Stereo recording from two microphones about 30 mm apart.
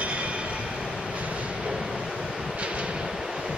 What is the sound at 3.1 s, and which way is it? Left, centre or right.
Vehicle, centre.